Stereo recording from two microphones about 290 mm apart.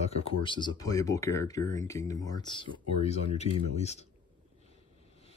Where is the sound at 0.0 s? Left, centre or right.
Centre.